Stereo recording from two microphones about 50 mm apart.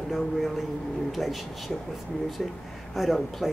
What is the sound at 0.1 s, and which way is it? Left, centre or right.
Speech, centre.